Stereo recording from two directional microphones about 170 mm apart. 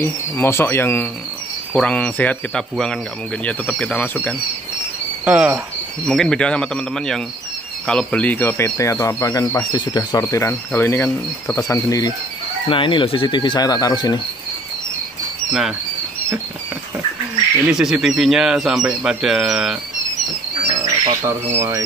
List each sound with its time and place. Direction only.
0.0 s speech: 15° left (ahead or behind)
5.2 s cricket: 10° right (ahead or behind)
6.0 s speech: 5° left (ahead or behind); by 14.2 s 25° left (ahead or behind)
17.6 s speech: 5° right (ahead or behind)
20.8 s speech: 20° right (ahead or behind)